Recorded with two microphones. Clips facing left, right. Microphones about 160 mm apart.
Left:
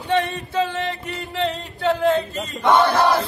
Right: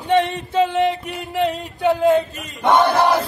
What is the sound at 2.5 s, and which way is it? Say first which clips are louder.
Chant: right 1 dB; 15° right (ahead or behind).